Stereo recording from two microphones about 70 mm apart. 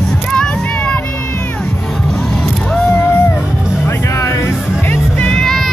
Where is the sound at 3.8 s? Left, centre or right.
Left.